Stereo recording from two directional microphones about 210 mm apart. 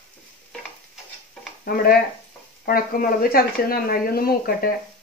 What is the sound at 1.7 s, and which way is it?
Speech, 40° left (ahead or behind).